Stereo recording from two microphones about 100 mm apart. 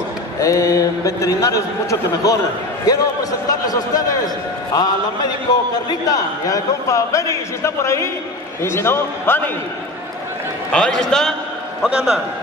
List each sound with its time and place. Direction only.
0.4 s a man's voice: 35° left (ahead or behind)
10.7 s a man's voice: 5° left (ahead or behind)